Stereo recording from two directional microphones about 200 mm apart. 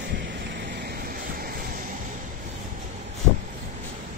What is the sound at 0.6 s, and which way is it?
Vehicle, 50° right (ahead or behind).